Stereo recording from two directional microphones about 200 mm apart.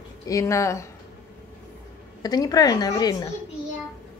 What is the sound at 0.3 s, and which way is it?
Speech, 15° left (ahead or behind).